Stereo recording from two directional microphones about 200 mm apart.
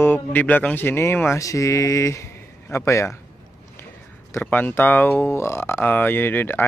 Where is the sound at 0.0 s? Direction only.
10° left (ahead or behind).